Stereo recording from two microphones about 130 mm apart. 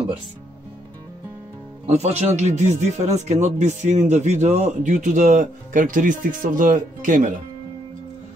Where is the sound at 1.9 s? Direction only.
55° right (ahead or behind); by 7.3 s 80° right.